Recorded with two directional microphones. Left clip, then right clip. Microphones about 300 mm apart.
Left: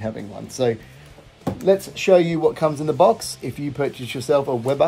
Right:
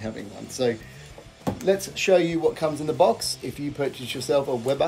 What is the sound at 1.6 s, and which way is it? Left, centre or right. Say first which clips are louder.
Speech: left 5 dB; centre.